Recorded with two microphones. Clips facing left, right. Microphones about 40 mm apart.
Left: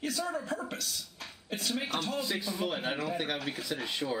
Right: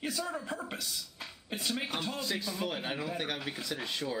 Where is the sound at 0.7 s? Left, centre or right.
Centre.